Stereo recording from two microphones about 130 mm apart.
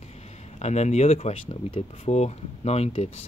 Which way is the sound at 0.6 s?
60° left (ahead or behind).